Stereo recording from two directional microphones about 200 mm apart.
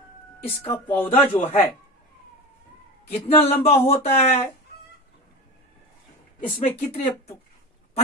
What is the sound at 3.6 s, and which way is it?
Speech, 30° left (ahead or behind).